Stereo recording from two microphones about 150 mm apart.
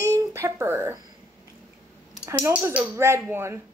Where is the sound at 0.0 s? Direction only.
20° right (ahead or behind).